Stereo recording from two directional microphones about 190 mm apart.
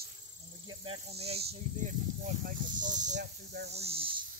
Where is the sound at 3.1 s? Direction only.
60° right (ahead or behind).